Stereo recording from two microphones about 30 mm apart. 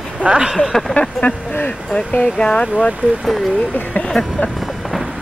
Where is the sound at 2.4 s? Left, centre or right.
Left.